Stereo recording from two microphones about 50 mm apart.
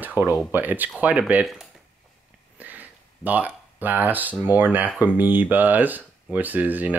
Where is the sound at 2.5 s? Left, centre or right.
Right.